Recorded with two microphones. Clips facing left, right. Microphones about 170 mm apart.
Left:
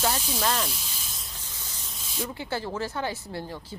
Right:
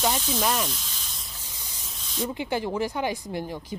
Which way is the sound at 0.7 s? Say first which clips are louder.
Right 1 dB; centre (ahead or behind).